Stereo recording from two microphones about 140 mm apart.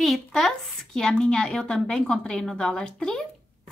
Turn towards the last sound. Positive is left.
turn(degrees=5)  # may be behind; listen again after turning